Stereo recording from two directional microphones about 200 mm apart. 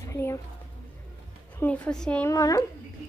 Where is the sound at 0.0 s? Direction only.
15° left (ahead or behind).